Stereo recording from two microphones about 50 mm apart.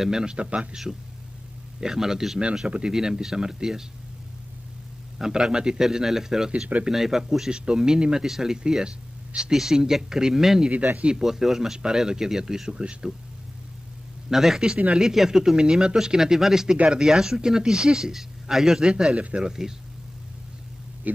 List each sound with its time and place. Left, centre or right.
0.0 s speech: centre
0.9 s speech: centre
2.6 s speech: right
2.9 s speech: centre
5.2 s speech: centre
10.7 s speech: right
11.1 s speech: centre
14.3 s speech: centre
16.7 s speech: right
17.0 s speech: centre